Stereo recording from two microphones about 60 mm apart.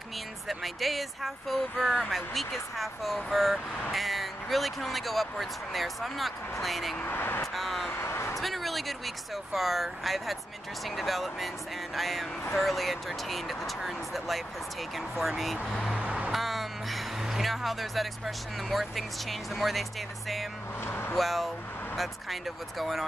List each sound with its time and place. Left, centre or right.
0.5 s speech: centre
7.0 s speech: left
7.5 s speech: centre
7.9 s a sound: left
8.4 s speech: centre
16.0 s vehicle: centre
16.3 s speech: centre
20.8 s vehicle: left
21.2 s speech: centre